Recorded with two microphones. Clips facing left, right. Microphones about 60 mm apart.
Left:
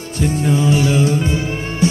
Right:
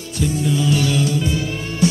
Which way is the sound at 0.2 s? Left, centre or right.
Left.